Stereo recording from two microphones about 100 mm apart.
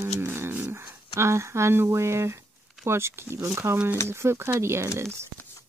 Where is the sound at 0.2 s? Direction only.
25° right (ahead or behind).